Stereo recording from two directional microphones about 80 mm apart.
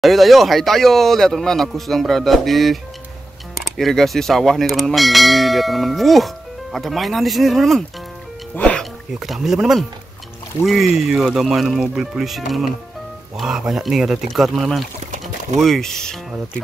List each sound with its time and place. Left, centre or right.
0.0 s speech: centre
8.5 s music: centre
9.1 s speech: centre